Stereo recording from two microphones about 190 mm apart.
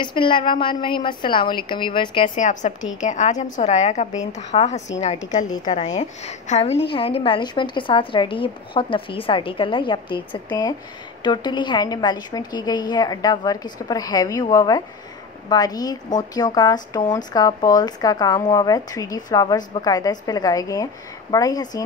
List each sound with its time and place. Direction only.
0.0 s a woman's voice: 25° left (ahead or behind)
2.2 s a woman's voice: 40° left (ahead or behind)
5.9 s a woman's voice: 35° left (ahead or behind); by 21.8 s 20° left (ahead or behind)